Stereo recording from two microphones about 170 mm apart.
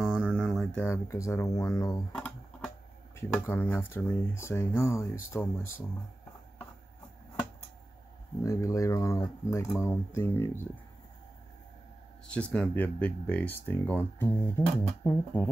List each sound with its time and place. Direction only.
0.0 s a sound: 5° right (ahead or behind)
0.7 s speech: 15° left (ahead or behind)
2.1 s music: 5° left (ahead or behind)
3.2 s speech: 15° left (ahead or behind)
8.4 s speech: 20° left (ahead or behind)
12.3 s speech: 5° left (ahead or behind)